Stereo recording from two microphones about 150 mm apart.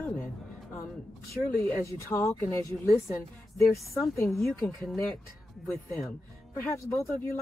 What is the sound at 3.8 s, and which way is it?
Speech, centre (ahead or behind).